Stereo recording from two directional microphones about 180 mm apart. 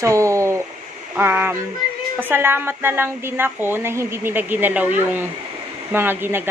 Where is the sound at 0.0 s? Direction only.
15° right (ahead or behind).